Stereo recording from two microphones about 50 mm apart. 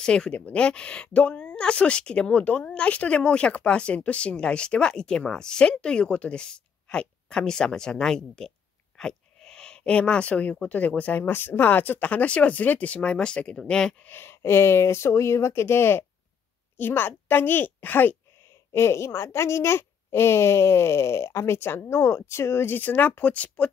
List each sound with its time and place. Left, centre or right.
0.0 s speech: centre
14.0 s a woman's voice: left
18.7 s speech: left